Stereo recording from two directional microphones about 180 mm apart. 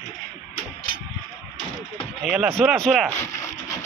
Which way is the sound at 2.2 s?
Centre (ahead or behind).